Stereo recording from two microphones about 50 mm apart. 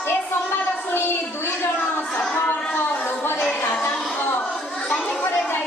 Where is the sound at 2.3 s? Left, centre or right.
Left.